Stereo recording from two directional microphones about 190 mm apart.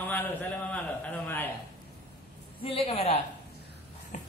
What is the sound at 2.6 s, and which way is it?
Speech, 30° left (ahead or behind).